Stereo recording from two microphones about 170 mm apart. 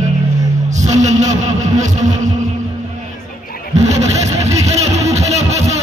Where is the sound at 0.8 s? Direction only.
45° right (ahead or behind).